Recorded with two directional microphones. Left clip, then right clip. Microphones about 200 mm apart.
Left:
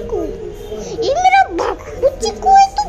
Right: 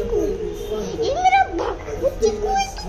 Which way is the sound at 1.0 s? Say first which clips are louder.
Left 5 dB; 35° left (ahead or behind).